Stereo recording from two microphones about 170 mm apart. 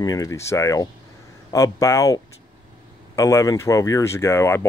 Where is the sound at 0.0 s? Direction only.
20° left (ahead or behind).